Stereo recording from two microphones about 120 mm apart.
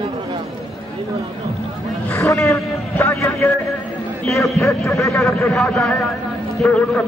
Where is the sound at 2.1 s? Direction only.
25° left (ahead or behind).